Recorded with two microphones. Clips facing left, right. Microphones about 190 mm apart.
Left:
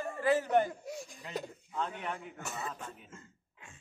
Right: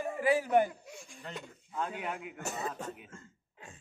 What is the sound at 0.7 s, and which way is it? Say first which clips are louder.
Speech: left 7 dB; 40° left (ahead or behind).